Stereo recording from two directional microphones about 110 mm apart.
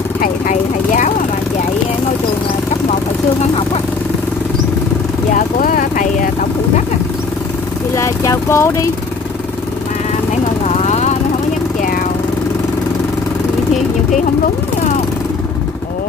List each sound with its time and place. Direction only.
7.9 s vehicle: 30° left (ahead or behind)
10.8 s vehicle: 90° left